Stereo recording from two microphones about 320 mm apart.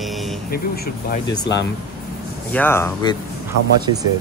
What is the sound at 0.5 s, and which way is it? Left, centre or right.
Speech, left.